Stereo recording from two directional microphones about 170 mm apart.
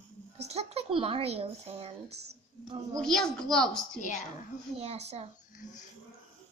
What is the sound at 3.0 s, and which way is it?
A woman's voice, 5° left (ahead or behind).